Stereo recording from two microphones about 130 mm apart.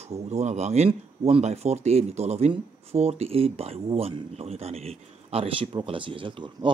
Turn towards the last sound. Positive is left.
turn(degrees=-40)  # may be behind; listen again after turning